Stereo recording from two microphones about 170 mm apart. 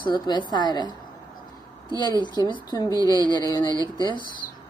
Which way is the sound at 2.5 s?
25° left (ahead or behind).